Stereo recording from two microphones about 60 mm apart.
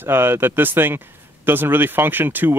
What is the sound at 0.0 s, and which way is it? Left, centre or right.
Speech, right.